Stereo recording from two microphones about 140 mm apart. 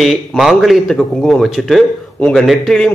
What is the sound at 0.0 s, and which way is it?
A man's voice, centre (ahead or behind).